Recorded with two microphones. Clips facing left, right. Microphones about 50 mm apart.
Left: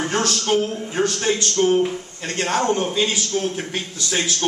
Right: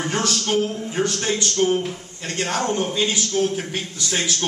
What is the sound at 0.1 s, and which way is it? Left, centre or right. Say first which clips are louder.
Speech: left 1 dB; centre.